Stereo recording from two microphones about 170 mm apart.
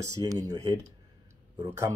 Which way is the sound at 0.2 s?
25° right (ahead or behind).